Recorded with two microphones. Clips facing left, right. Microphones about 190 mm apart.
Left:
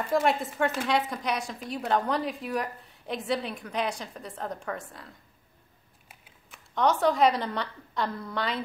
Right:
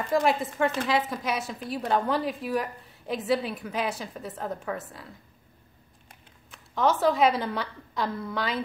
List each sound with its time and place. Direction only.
0.0 s a woman's voice: centre (ahead or behind)